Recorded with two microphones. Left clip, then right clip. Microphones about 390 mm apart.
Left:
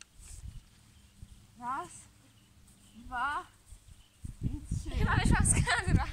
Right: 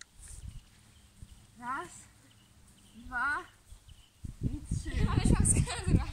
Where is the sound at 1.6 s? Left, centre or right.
Centre.